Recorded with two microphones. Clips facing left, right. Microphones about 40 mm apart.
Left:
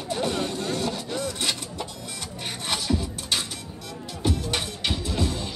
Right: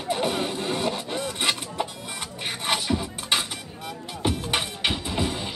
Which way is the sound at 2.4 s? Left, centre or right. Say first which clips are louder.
Right 3 dB; right.